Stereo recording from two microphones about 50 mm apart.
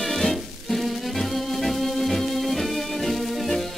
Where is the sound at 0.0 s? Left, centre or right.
Centre.